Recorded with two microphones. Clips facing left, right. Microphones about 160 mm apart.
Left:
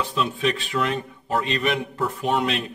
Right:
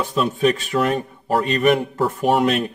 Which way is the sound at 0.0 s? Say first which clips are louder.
Right 5 dB; 45° right (ahead or behind).